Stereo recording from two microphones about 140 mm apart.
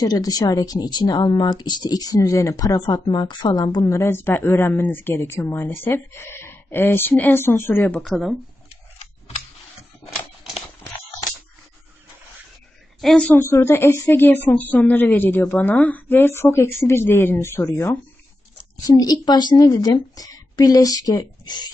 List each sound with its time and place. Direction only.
0.0 s speech: 25° left (ahead or behind)
8.0 s speech: centre (ahead or behind)
13.0 s speech: 5° left (ahead or behind)
13.4 s a woman's voice: 20° left (ahead or behind)